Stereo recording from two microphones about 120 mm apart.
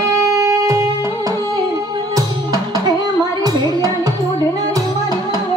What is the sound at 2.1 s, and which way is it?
Music, 30° right (ahead or behind).